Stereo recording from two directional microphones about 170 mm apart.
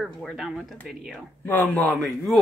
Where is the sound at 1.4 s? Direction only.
10° left (ahead or behind).